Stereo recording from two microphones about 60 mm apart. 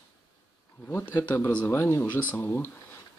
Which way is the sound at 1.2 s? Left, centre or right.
Left.